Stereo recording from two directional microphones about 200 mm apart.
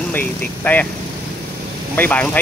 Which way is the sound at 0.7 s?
10° left (ahead or behind).